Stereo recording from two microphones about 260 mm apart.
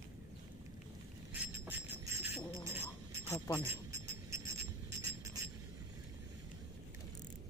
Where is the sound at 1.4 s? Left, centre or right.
Centre.